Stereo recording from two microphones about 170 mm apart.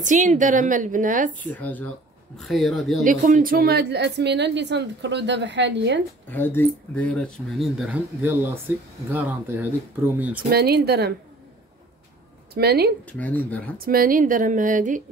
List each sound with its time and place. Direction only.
0.0 s a woman's voice: 45° right (ahead or behind)
1.5 s speech: 10° left (ahead or behind)
3.0 s a woman's voice: 50° right (ahead or behind); by 5.9 s 90° right
6.2 s speech: 10° left (ahead or behind); by 10.4 s 10° right (ahead or behind)
10.5 s speech: 65° right (ahead or behind)
12.5 s speech: 70° right (ahead or behind)
13.0 s speech: 10° left (ahead or behind)
13.7 s a woman's voice: 60° right (ahead or behind)